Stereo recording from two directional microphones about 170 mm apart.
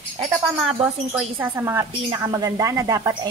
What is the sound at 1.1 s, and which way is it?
A woman's voice, 15° right (ahead or behind).